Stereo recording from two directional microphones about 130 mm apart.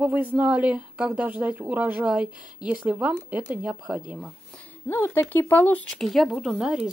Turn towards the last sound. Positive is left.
turn(degrees=-5)  # may be behind; listen again after turning